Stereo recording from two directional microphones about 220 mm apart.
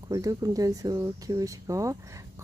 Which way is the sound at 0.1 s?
15° right (ahead or behind).